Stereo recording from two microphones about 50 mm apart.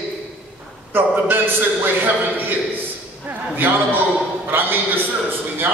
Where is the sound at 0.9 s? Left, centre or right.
Right.